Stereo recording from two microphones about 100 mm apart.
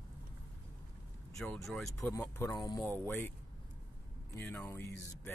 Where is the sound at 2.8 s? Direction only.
20° left (ahead or behind).